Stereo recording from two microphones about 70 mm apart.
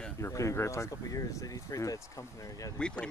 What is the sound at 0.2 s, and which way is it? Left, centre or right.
Speech, left.